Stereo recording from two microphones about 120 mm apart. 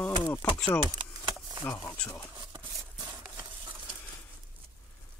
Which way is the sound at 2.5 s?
25° right (ahead or behind).